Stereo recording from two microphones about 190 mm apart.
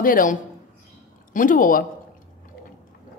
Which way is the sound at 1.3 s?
45° left (ahead or behind).